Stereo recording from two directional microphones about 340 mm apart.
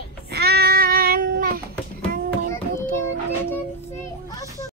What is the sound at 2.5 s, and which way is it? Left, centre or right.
Child singing, centre.